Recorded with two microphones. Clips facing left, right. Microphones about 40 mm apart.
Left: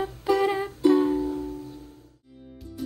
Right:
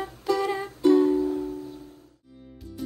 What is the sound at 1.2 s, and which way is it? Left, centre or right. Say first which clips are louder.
Music: right 2 dB; centre.